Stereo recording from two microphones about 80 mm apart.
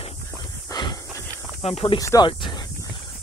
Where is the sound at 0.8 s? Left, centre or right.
Left.